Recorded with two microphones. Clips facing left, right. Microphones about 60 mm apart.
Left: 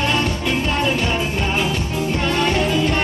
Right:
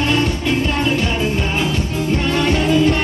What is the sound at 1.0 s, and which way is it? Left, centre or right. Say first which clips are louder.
Music: right 2 dB; left.